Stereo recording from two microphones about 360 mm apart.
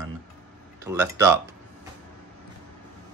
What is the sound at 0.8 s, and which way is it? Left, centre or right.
Speech, centre.